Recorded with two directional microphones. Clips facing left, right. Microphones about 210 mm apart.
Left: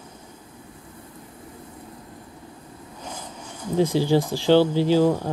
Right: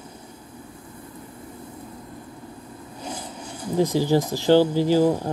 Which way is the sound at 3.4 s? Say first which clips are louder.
Even; 35° right (ahead or behind).